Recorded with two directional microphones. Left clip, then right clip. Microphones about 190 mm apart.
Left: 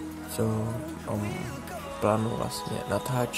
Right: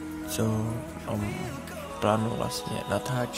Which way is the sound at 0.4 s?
Centre (ahead or behind).